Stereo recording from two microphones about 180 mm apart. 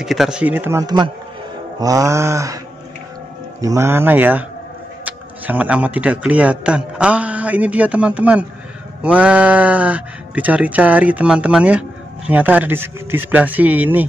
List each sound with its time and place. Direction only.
0.0 s speech: centre (ahead or behind); by 2.6 s 15° right (ahead or behind)
3.6 s speech: 15° right (ahead or behind)